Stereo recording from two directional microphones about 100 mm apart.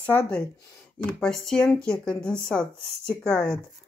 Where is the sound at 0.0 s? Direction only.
20° left (ahead or behind).